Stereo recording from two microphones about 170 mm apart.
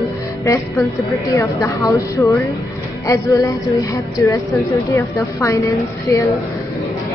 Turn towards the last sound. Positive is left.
turn(degrees=20)  # may be behind; listen again after turning